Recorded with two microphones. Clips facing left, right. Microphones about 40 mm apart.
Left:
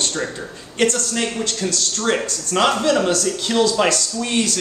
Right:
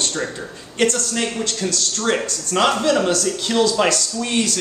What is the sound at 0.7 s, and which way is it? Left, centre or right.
Speech, centre.